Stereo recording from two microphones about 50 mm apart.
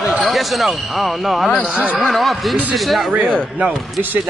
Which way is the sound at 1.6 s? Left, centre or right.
Right.